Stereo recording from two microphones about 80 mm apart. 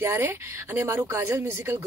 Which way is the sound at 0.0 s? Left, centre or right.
Right.